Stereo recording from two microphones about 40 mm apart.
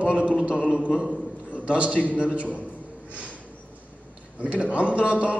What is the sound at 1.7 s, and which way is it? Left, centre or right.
Speech, right.